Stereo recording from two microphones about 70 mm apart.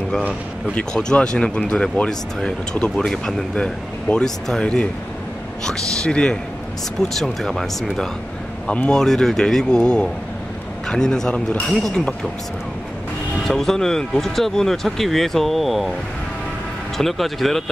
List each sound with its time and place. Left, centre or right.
0.7 s speech: centre
8.6 s speech: centre
13.5 s speech: centre
16.9 s speech: centre